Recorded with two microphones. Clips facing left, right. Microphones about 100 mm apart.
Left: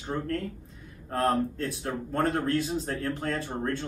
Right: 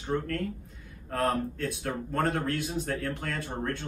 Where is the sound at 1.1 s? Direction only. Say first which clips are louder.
Left 2 dB; 30° left (ahead or behind).